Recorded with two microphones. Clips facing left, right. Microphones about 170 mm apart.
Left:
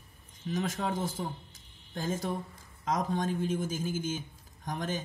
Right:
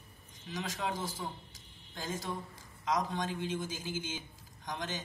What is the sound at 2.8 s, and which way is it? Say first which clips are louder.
A man's voice: left 3 dB; 45° left (ahead or behind).